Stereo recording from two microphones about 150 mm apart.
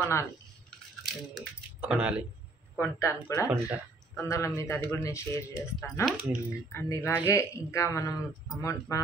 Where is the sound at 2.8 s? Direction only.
20° left (ahead or behind).